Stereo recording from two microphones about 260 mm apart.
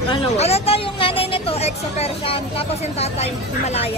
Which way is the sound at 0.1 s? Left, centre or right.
Left.